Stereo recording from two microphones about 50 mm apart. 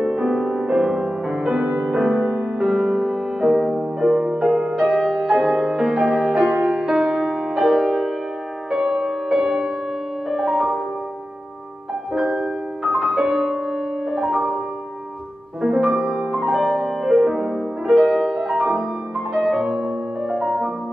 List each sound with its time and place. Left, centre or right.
0.0 s music: centre
2.1 s music: centre
4.8 s music: centre
12.1 s music: centre
15.6 s music: centre
16.5 s music: centre